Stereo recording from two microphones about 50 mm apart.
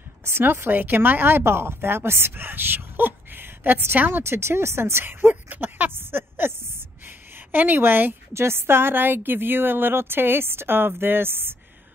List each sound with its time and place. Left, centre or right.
0.2 s speech: right
4.2 s speech: right
5.3 s speech: right
7.1 s a sound: right
8.3 s speech: right